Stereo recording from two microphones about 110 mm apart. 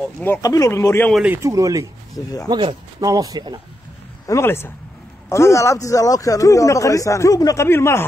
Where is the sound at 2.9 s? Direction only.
30° right (ahead or behind).